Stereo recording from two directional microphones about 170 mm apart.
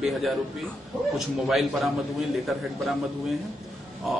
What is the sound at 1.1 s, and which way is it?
Speech, centre (ahead or behind).